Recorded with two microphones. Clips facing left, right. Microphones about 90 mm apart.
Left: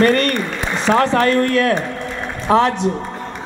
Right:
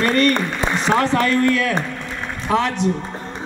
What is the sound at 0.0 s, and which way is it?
A man's voice, 45° left (ahead or behind).